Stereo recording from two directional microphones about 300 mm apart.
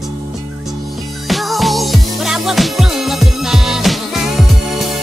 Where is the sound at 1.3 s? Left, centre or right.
Centre.